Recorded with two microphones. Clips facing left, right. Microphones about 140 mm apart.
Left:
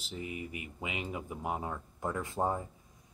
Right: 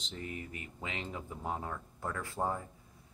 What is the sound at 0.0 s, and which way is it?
Speech, 10° left (ahead or behind).